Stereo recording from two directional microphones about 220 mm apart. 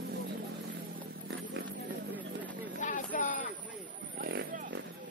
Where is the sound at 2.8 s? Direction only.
35° left (ahead or behind).